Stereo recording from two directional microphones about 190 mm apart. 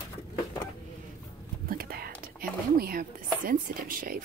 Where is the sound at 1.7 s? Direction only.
50° right (ahead or behind).